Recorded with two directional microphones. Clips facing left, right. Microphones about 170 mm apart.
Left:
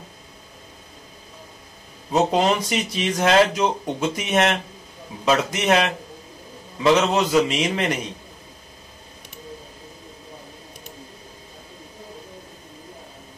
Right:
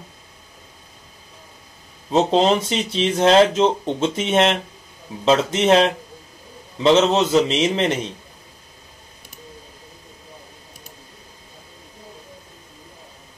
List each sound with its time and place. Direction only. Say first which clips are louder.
2.1 s speech: right 3 dB; 25° right (ahead or behind)